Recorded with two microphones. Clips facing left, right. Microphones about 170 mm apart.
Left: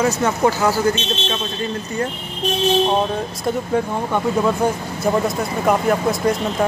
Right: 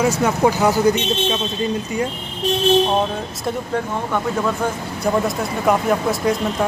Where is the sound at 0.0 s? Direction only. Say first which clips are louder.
Right 1 dB; 10° right (ahead or behind).